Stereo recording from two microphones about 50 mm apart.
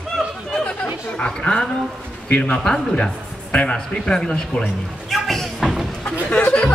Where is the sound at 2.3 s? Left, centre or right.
Left.